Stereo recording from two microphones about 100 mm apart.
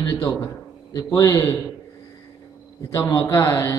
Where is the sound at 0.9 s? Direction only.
40° left (ahead or behind).